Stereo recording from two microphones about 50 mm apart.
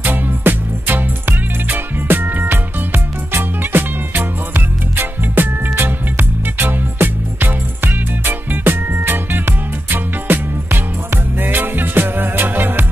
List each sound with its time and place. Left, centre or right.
0.0 s music: right